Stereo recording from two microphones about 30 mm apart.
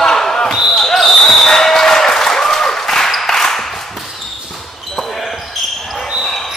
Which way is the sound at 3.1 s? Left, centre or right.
Centre.